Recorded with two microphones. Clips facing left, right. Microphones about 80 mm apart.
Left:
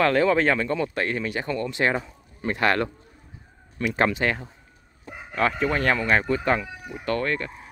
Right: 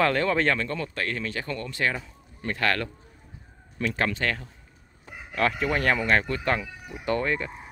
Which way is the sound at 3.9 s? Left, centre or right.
Left.